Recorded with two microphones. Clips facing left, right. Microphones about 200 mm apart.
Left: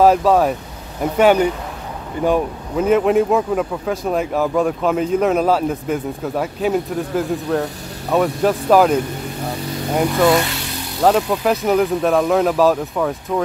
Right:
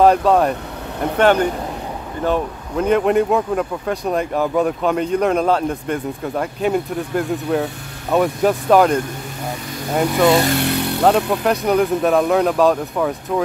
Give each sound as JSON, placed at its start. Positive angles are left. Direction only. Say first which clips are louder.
{"t": 0.0, "sound": "speech", "louder": "even", "side_deg": 5}
{"t": 10.4, "sound": "vehicle", "louder": "right 8 dB", "side_deg": -55}
{"t": 11.0, "sound": "speech", "louder": "left 2 dB", "side_deg": 0}